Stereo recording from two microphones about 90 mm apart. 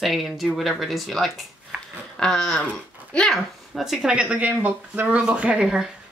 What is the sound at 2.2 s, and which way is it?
A child's voice, 5° left (ahead or behind).